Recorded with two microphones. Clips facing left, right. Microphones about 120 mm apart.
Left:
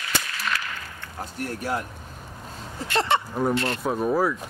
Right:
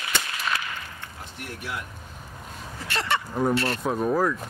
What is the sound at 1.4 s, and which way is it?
Speech, 40° left (ahead or behind).